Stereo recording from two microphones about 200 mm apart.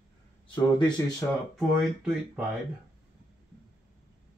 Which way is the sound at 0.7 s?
20° left (ahead or behind).